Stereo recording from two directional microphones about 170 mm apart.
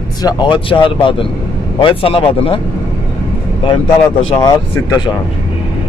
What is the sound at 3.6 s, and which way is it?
Speech, 30° left (ahead or behind).